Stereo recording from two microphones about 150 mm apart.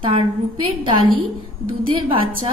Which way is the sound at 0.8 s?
35° right (ahead or behind).